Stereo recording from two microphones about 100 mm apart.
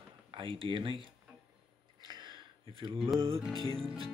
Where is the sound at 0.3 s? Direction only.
60° right (ahead or behind).